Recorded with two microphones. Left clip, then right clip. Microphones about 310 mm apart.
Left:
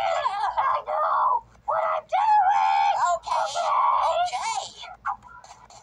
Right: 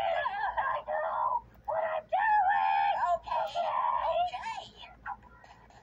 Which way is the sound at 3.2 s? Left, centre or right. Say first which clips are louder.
Left 7 dB; centre.